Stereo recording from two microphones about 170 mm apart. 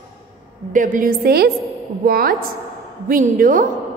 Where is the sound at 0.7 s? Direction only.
50° right (ahead or behind).